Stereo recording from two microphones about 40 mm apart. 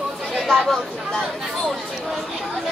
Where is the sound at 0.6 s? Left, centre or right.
Centre.